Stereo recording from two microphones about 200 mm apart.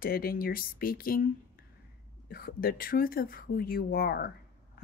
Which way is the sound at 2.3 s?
50° left (ahead or behind).